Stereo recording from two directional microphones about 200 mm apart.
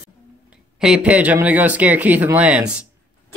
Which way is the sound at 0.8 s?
5° right (ahead or behind).